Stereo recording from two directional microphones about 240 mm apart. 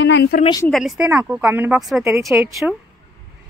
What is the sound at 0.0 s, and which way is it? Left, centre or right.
Speech, left.